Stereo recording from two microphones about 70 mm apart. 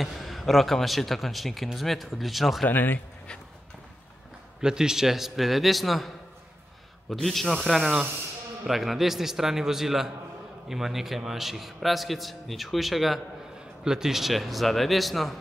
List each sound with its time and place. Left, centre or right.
0.0 s speech: centre
2.6 s speech: left
4.6 s speech: centre